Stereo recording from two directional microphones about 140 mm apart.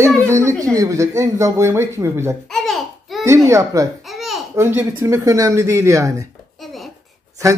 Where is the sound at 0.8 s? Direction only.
20° right (ahead or behind).